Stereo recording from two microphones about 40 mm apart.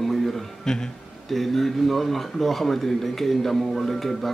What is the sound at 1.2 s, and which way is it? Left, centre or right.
Speech, centre.